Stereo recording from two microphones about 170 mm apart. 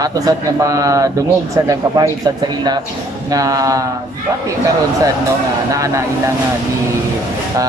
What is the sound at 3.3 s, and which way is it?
Speech, 20° right (ahead or behind).